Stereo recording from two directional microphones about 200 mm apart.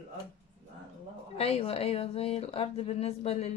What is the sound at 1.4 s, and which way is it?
A woman's voice, 30° left (ahead or behind).